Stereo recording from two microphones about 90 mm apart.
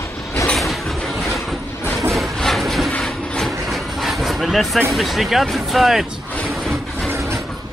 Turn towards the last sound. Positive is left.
turn(degrees=0)  # may be behind; listen again after turning